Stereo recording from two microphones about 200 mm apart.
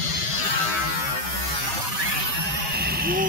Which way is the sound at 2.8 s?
50° right (ahead or behind).